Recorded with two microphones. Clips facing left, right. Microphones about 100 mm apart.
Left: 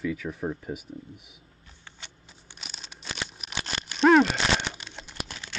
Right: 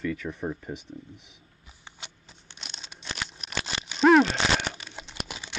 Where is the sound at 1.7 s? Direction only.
15° right (ahead or behind).